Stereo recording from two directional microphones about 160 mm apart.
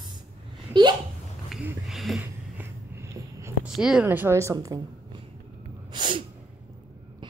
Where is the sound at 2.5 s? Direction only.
15° right (ahead or behind).